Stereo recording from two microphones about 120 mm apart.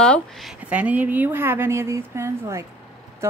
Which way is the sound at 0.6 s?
10° right (ahead or behind).